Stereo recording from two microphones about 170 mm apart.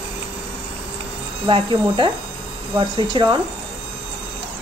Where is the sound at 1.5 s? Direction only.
30° right (ahead or behind).